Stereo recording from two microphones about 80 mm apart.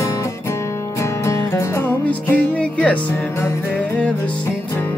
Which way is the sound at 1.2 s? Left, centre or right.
Left.